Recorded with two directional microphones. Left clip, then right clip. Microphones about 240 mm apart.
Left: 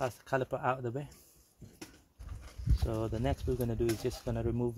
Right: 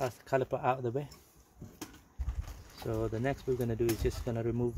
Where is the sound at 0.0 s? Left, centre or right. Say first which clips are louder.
Right 1 dB; left.